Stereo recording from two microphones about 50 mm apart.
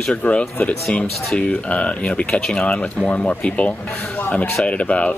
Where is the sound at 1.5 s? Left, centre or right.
Left.